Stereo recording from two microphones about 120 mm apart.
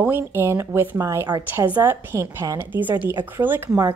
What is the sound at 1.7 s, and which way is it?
A woman's voice, 20° right (ahead or behind).